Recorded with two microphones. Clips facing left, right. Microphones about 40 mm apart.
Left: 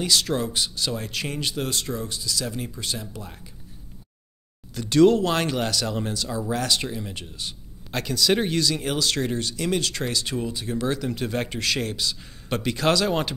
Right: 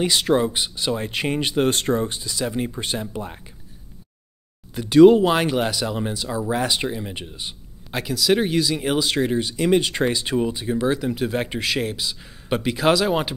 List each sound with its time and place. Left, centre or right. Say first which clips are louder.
0.0 s speech: right 5 dB; right
4.7 s speech: right 6 dB; centre